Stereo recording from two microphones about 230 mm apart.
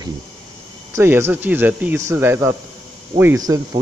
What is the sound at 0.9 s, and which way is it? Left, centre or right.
A man's voice, centre.